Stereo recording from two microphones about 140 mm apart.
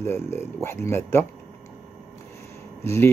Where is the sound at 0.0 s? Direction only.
15° left (ahead or behind).